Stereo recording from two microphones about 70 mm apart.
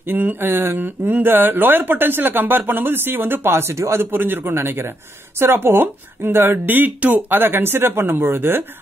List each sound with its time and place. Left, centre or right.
0.1 s speech: right